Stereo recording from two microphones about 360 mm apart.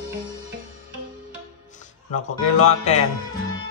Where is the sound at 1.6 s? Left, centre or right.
Centre.